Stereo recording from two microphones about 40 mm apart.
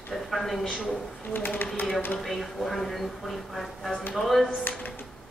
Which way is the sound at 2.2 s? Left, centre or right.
Centre.